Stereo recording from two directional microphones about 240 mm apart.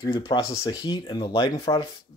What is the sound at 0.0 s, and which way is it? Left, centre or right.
Speech, centre.